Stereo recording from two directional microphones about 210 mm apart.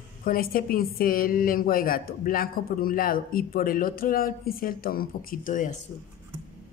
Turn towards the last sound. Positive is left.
turn(degrees=40)  # may be behind; listen again after turning